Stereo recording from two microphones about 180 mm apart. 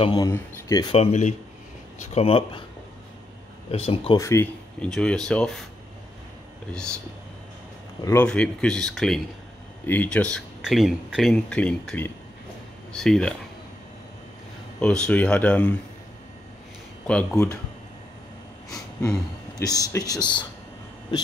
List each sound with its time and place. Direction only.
0.0 s speech: 25° left (ahead or behind)
0.9 s speech: 40° left (ahead or behind)
3.7 s speech: 35° left (ahead or behind)
4.2 s speech: 15° left (ahead or behind)
4.8 s speech: 5° left (ahead or behind)
6.7 s speech: 5° left (ahead or behind)
8.0 s speech: 15° left (ahead or behind)
8.3 s speech: 5° left (ahead or behind)
14.8 s speech: 5° left (ahead or behind)
17.1 s speech: 5° left (ahead or behind)
19.9 s speech: 20° left (ahead or behind)